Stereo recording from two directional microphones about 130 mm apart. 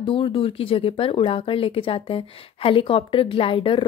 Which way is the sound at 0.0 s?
40° left (ahead or behind).